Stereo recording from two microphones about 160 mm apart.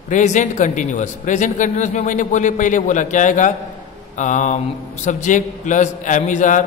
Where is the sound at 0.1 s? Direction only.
50° left (ahead or behind).